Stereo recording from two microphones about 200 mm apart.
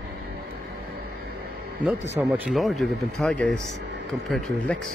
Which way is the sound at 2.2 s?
5° right (ahead or behind).